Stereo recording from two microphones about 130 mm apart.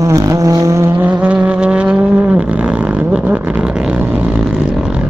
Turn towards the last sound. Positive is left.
turn(degrees=-10)  # may be behind; listen again after turning